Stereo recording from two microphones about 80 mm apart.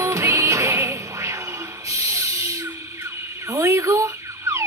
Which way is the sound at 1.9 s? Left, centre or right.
Right.